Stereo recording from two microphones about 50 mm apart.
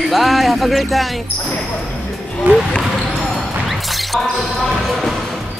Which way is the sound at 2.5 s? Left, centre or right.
Right.